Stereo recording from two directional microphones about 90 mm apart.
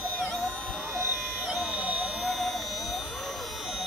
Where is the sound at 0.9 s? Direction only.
30° right (ahead or behind).